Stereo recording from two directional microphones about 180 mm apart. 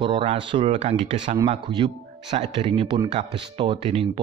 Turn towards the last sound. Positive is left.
turn(degrees=-30)  # may be behind; listen again after turning